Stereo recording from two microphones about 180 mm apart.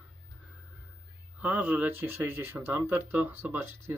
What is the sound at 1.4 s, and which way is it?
Speech, 10° right (ahead or behind).